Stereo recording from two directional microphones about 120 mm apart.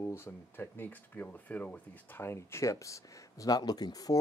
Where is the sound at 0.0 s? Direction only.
20° left (ahead or behind).